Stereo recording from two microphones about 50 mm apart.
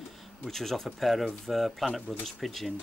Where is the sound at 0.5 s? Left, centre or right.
Centre.